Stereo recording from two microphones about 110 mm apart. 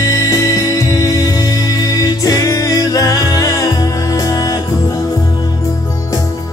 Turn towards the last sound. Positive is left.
turn(degrees=35)  # may be behind; listen again after turning